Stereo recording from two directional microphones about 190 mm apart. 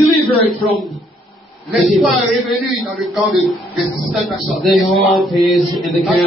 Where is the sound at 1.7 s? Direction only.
Centre (ahead or behind).